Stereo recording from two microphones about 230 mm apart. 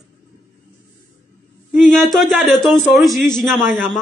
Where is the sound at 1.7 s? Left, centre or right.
Centre.